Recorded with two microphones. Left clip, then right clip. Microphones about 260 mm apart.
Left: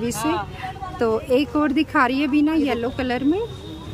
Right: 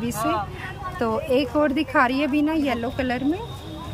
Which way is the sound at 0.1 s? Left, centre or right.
Centre.